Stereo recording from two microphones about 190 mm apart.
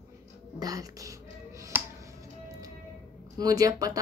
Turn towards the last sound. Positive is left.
turn(degrees=-20)  # may be behind; listen again after turning